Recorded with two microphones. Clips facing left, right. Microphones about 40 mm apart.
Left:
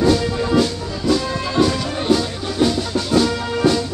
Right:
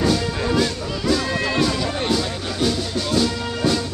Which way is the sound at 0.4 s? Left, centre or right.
Centre.